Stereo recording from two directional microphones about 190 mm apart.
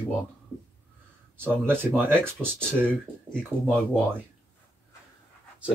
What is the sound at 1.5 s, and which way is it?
Speech, 10° right (ahead or behind).